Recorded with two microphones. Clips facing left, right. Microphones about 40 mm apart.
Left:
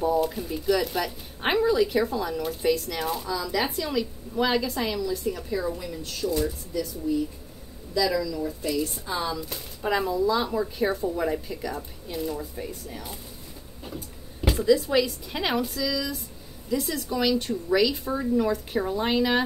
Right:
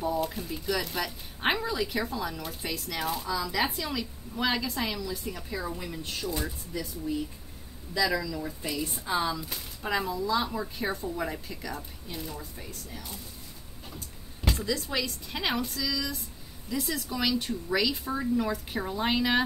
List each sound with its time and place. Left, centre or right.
0.0 s speech: centre
5.8 s speech: centre